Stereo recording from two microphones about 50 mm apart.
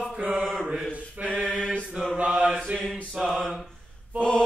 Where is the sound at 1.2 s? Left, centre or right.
Right.